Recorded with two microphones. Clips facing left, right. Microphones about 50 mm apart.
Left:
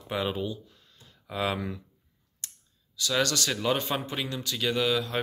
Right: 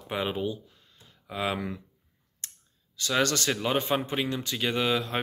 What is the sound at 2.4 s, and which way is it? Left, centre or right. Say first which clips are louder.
Clicking: right 1 dB; right.